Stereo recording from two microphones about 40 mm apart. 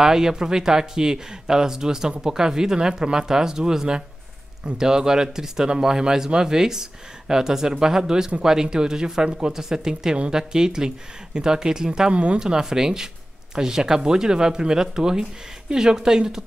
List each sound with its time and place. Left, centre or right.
0.0 s speech: centre
12.1 s speech: right
12.4 s speech: centre